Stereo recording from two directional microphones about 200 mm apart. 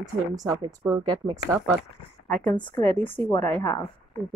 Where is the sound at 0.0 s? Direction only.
20° right (ahead or behind).